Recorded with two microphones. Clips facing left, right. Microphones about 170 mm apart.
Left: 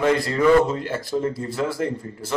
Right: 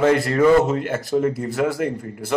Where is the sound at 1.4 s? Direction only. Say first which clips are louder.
Right 4 dB; 65° right (ahead or behind).